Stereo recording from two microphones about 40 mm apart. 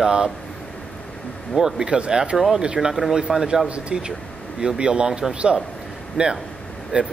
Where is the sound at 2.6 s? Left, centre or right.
Right.